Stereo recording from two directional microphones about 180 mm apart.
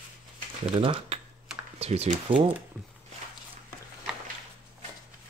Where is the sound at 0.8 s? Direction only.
30° right (ahead or behind).